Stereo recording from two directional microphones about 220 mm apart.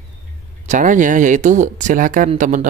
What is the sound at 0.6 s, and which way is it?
Speech, 35° right (ahead or behind).